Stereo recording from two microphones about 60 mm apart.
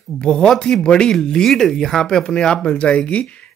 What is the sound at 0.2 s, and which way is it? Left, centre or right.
Speech, centre.